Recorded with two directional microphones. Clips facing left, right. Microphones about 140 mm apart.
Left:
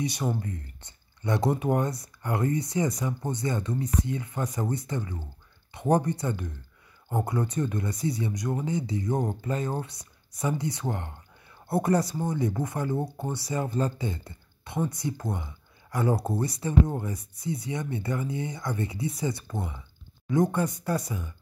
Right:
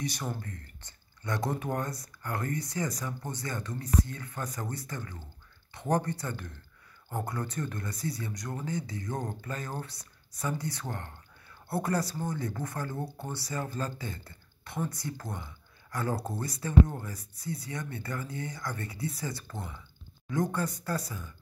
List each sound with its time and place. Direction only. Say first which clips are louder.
0.0 s speech: left 6 dB; 20° left (ahead or behind)